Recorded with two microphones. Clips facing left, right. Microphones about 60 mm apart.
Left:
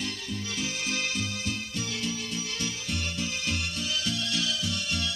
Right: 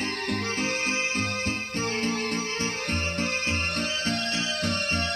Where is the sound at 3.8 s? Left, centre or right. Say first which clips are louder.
Right 3 dB; right.